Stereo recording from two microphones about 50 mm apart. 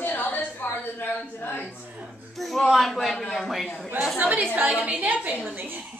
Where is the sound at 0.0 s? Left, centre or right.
Left.